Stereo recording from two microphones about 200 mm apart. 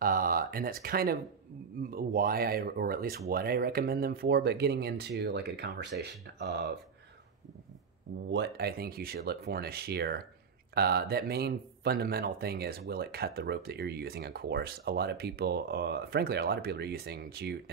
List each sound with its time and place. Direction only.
0.0 s speech: 45° right (ahead or behind)
8.3 s speech: 55° right (ahead or behind)